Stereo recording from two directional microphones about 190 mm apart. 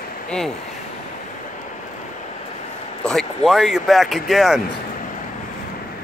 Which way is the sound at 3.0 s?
Centre (ahead or behind).